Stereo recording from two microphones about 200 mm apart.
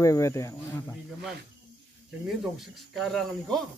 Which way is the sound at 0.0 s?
15° left (ahead or behind).